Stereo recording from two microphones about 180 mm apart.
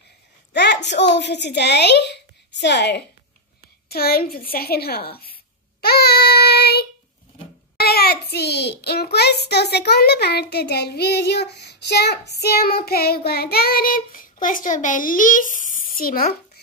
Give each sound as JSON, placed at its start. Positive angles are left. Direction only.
{"t": 0.5, "sound": "a sound", "side_deg": 70}
{"t": 0.8, "sound": "a child's voice", "side_deg": 75}
{"t": 3.9, "sound": "a child's voice", "side_deg": 60}
{"t": 5.8, "sound": "child singing", "side_deg": 60}
{"t": 7.8, "sound": "a child's voice", "side_deg": 60}